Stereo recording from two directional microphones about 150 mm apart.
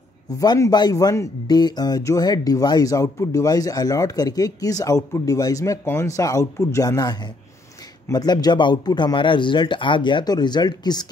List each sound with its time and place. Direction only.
0.4 s speech: 25° left (ahead or behind)